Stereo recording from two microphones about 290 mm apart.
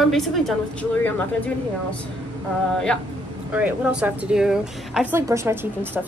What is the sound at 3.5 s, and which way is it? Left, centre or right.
A woman's voice, centre.